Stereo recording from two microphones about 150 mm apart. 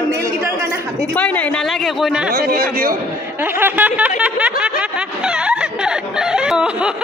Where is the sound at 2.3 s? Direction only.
80° right.